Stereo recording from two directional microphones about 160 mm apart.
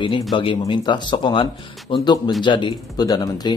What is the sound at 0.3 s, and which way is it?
Speech, 30° left (ahead or behind).